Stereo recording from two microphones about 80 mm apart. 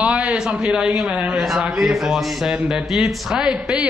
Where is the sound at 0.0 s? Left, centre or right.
Centre.